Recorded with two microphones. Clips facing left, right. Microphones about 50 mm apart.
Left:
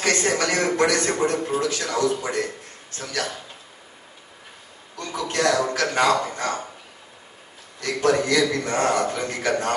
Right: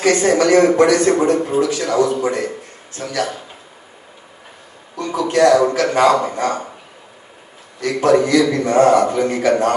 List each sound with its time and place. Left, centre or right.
0.0 s a man's voice: centre
4.9 s a man's voice: right
7.8 s a man's voice: centre